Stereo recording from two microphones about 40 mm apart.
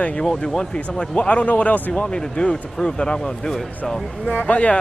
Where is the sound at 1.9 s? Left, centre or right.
Left.